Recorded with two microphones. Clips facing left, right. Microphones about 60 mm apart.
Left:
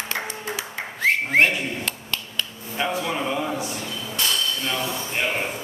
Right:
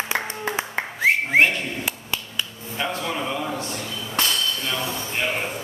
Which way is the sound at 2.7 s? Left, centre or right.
Centre.